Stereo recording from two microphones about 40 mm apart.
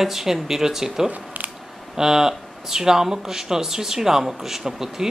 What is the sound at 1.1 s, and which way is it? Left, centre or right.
Camera, right.